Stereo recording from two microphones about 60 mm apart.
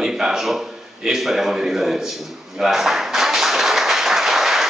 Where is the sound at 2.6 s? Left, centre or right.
Centre.